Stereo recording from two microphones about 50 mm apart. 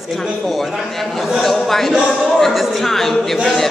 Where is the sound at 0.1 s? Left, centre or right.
Centre.